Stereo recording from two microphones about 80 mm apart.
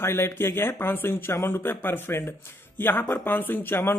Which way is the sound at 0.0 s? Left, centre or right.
Left.